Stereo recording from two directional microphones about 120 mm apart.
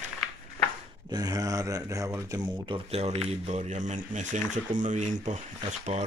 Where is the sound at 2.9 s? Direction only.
60° right (ahead or behind).